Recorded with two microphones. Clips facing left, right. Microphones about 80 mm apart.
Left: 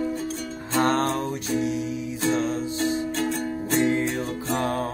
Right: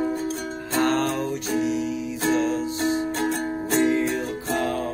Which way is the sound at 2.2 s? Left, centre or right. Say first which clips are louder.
Right 2 dB; right.